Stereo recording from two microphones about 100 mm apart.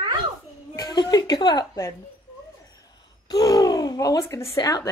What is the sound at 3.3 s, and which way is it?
Speech, 35° left (ahead or behind).